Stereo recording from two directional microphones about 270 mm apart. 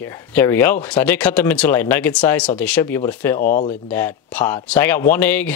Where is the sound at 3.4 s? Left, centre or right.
Left.